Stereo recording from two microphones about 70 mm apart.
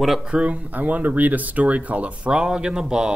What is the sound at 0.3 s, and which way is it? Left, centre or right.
Speech, centre.